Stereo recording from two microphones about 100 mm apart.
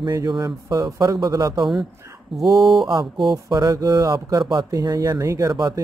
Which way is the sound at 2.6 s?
Centre (ahead or behind).